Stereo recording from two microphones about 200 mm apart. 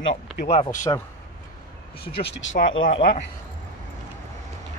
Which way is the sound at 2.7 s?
70° left (ahead or behind).